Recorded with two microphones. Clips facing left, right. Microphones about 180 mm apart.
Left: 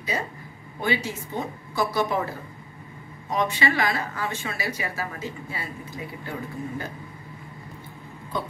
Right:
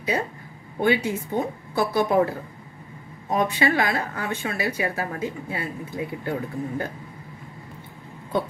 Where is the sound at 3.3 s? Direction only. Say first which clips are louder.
Right 3 dB; 55° right (ahead or behind).